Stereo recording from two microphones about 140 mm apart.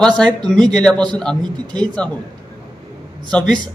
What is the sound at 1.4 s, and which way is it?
Speech, 30° right (ahead or behind).